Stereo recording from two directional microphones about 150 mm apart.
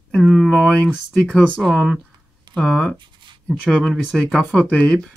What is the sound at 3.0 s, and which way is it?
Writing, 30° right (ahead or behind).